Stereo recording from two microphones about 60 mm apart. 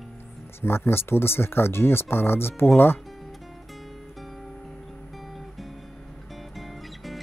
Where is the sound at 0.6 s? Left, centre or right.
Left.